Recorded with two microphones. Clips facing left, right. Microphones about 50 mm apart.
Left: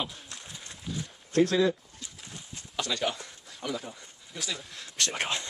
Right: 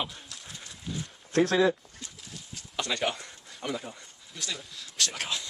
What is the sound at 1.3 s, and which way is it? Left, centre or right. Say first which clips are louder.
Speech: even; right.